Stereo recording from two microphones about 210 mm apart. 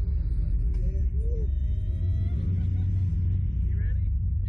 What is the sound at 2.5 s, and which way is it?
Vehicle, 65° right (ahead or behind).